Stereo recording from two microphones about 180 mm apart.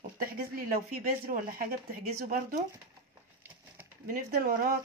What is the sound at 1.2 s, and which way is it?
Speech, 55° right (ahead or behind).